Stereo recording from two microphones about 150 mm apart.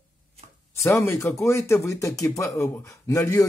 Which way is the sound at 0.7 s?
20° left (ahead or behind).